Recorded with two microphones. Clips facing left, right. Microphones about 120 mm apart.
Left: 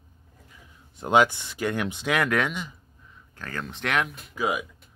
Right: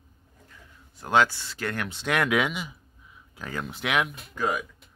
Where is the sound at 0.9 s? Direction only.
20° left (ahead or behind).